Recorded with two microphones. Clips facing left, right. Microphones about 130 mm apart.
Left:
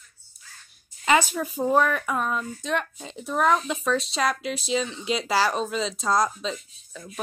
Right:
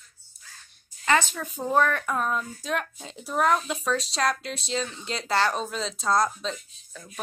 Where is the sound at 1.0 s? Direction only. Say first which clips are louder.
Left 3 dB; 10° left (ahead or behind).